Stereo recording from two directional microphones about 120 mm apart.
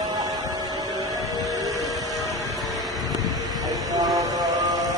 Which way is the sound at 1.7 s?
30° right (ahead or behind).